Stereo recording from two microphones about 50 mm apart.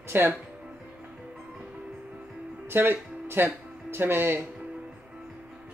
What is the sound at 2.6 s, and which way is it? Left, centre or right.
Speech, right.